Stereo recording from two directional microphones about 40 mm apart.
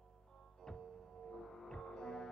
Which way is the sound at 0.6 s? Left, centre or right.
Centre.